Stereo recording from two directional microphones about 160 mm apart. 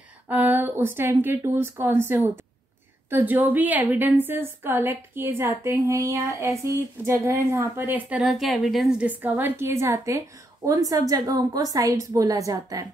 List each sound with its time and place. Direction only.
0.3 s a woman's voice: 10° right (ahead or behind)